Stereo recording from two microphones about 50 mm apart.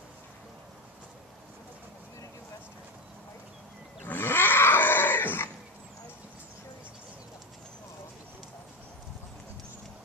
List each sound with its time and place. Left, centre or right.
4.0 s roaring cats: left